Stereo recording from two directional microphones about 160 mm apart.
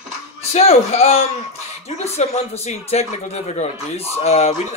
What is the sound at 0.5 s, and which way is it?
A man's voice, 40° left (ahead or behind).